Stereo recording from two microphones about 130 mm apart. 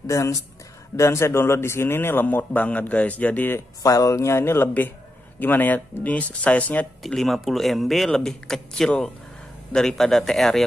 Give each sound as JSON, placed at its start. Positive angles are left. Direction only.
{"t": 0.0, "sound": "a man's voice", "side_deg": 25}